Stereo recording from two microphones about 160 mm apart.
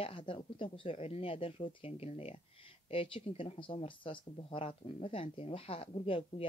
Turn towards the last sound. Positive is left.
turn(degrees=35)  # may be behind; listen again after turning